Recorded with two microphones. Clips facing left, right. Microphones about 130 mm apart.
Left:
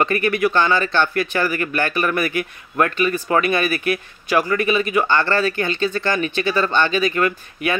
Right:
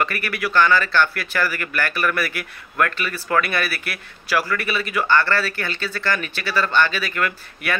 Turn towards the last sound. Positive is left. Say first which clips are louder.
# left 4 dB
turn(degrees=20)  # may be behind; listen again after turning